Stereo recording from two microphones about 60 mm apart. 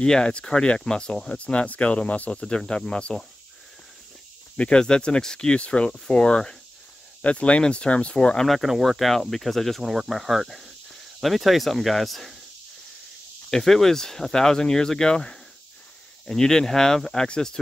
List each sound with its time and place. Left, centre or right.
0.0 s speech: centre
4.6 s speech: centre
8.5 s speech: centre
13.5 s speech: centre